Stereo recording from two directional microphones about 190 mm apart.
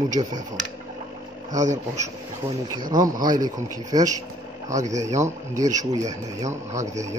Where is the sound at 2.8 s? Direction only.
45° right (ahead or behind).